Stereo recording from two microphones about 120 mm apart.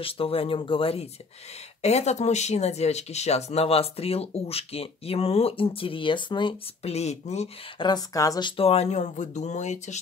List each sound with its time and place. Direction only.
0.0 s speech: 50° left (ahead or behind)
1.8 s speech: 65° left (ahead or behind); by 6.5 s 40° left (ahead or behind)
6.8 s speech: 60° left (ahead or behind)
7.8 s speech: 30° left (ahead or behind); by 9.9 s 75° left (ahead or behind)